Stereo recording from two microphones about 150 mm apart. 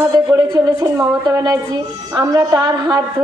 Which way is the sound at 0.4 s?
25° right (ahead or behind).